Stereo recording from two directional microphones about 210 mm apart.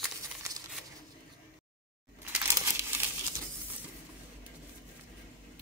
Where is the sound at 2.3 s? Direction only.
10° right (ahead or behind).